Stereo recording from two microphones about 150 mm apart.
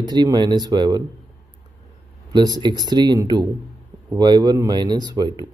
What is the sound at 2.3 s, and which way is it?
Speech, 30° right (ahead or behind).